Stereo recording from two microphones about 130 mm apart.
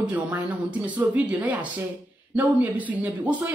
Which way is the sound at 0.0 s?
10° right (ahead or behind).